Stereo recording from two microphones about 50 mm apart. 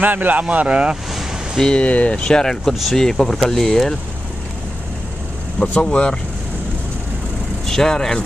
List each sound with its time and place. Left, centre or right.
0.0 s speech: right
1.6 s speech: centre
2.7 s speech: centre
3.0 s speech: centre
5.6 s speech: centre
7.6 s speech: centre